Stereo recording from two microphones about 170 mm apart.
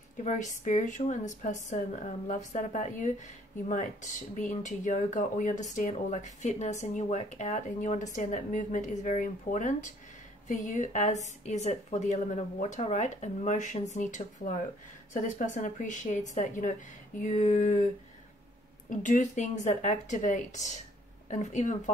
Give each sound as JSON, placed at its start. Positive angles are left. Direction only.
{"t": 0.2, "sound": "speech", "side_deg": 45}
{"t": 18.9, "sound": "speech", "side_deg": 50}